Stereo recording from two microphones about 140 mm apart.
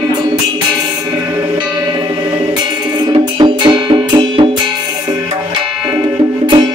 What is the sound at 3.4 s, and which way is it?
Music, 35° right (ahead or behind).